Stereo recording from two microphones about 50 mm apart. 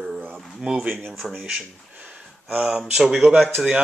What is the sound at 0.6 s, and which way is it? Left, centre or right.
Speech, centre.